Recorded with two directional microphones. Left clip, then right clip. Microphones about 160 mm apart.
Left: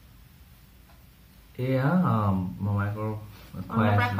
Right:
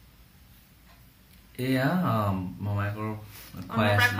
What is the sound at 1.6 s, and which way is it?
Speech, 30° right (ahead or behind).